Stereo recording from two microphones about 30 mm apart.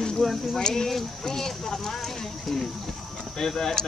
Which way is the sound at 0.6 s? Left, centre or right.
Left.